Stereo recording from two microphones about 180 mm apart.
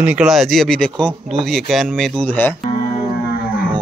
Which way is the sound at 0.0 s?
5° right (ahead or behind).